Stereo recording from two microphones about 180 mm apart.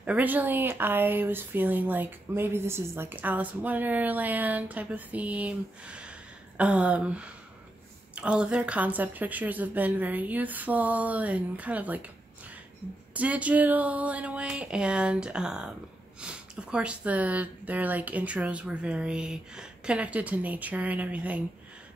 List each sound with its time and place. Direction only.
0.0 s speech: 10° right (ahead or behind)
13.1 s speech: 10° right (ahead or behind)